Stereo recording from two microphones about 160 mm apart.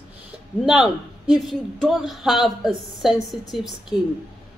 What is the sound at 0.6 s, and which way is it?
A man's voice, 5° right (ahead or behind).